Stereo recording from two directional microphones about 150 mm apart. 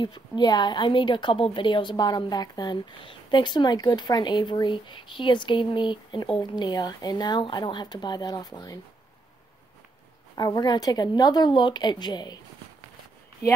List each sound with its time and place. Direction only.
0.0 s a woman's voice: 30° left (ahead or behind)
10.3 s a woman's voice: 25° left (ahead or behind)